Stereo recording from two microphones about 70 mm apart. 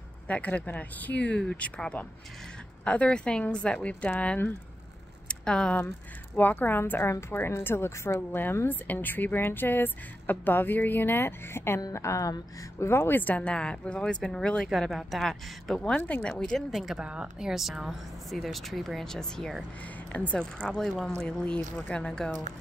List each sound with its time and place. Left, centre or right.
0.3 s a woman's voice: left
5.3 s a sound: centre
6.3 s a woman's voice: left
14.7 s speech: centre
16.7 s speech: centre
21.7 s a woman's voice: left
22.0 s speech: centre